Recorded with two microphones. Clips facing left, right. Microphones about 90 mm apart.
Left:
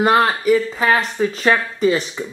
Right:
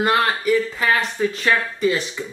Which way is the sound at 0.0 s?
25° left (ahead or behind).